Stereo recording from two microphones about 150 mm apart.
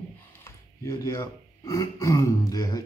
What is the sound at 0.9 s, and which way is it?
Speech, 20° left (ahead or behind).